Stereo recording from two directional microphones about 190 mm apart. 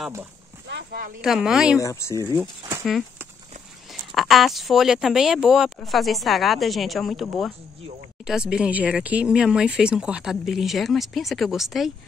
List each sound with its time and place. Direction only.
0.7 s a sound: 55° right (ahead or behind)
1.2 s speech: centre (ahead or behind)
1.8 s speech: 15° left (ahead or behind)
2.8 s speech: centre (ahead or behind)